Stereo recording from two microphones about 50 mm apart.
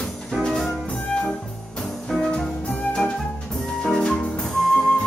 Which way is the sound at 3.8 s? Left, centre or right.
Centre.